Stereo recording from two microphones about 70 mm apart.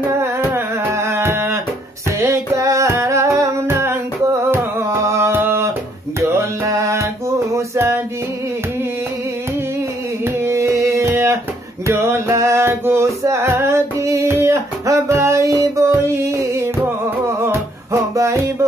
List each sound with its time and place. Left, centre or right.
0.6 s music: right
3.6 s humming: right
4.7 s music: right
10.2 s music: right
13.5 s singing: right
17.3 s music: right